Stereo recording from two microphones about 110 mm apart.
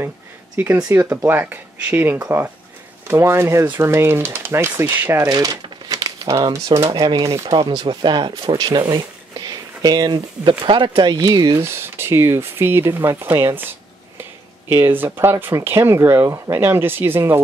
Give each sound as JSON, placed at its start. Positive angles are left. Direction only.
{"t": 0.8, "sound": "speech", "side_deg": -15}
{"t": 5.2, "sound": "crumpling", "side_deg": -30}
{"t": 6.4, "sound": "speech", "side_deg": -30}
{"t": 6.9, "sound": "speech", "side_deg": -40}
{"t": 11.6, "sound": "speech", "side_deg": -20}
{"t": 14.7, "sound": "speech", "side_deg": -20}